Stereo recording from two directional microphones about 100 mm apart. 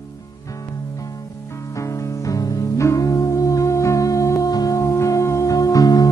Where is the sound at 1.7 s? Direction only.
30° left (ahead or behind).